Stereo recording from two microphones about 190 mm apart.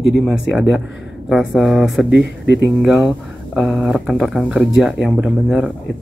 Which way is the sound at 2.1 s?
65° left (ahead or behind).